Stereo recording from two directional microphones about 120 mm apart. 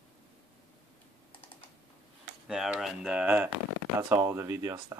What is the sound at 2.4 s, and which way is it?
Speech, 5° right (ahead or behind).